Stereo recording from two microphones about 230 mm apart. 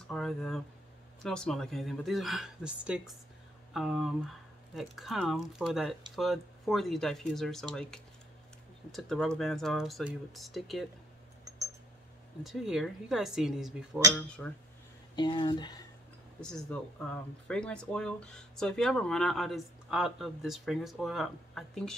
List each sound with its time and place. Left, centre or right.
0.1 s speech: centre
8.9 s speech: centre
12.4 s speech: centre
14.1 s speech: centre
15.1 s speech: centre
16.3 s speech: centre